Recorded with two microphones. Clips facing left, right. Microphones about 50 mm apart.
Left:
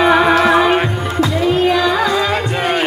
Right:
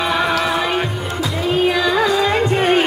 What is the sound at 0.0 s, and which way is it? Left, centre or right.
Music, left.